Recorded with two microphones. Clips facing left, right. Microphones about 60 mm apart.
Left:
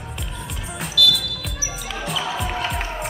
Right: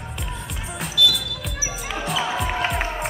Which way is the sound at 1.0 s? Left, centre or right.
Right.